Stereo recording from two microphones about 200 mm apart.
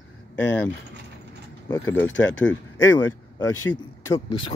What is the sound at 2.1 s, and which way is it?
Speech, 70° left (ahead or behind).